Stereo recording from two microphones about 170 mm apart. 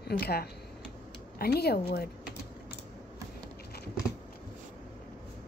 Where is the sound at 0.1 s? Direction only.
65° left (ahead or behind).